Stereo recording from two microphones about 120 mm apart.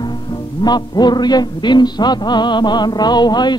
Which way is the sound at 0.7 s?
35° left (ahead or behind).